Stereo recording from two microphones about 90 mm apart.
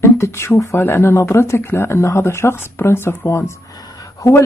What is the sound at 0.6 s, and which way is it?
Speech, 30° left (ahead or behind).